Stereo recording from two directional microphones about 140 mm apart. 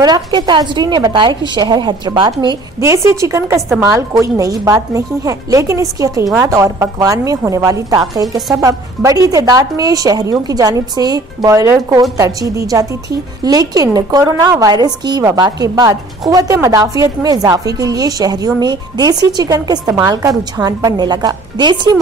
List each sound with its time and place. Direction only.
0.0 s a woman's voice: 30° right (ahead or behind)
2.8 s a woman's voice: 20° right (ahead or behind)